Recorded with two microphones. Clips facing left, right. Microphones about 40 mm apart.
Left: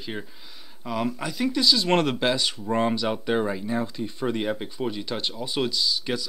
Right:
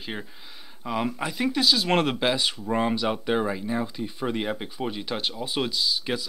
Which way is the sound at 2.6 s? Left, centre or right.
Centre.